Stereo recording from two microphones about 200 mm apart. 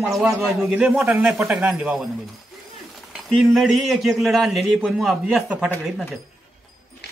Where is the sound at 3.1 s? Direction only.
Centre (ahead or behind).